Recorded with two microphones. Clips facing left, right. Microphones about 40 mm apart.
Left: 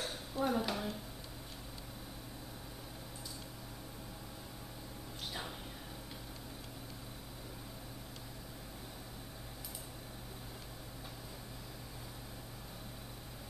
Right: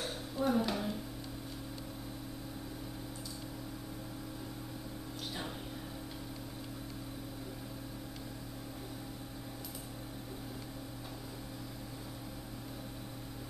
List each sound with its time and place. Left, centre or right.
0.0 s dishes: centre